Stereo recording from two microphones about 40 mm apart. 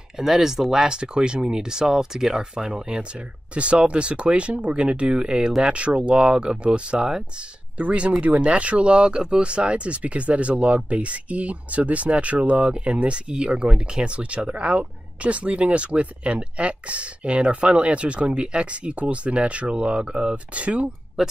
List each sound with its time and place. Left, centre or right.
0.2 s speech: centre; by 20.9 s right
21.2 s speech: centre